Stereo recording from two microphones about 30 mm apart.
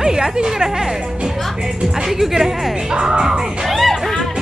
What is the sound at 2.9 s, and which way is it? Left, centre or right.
Music, right.